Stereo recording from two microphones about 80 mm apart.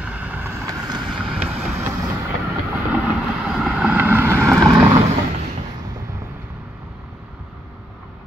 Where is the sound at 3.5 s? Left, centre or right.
Centre.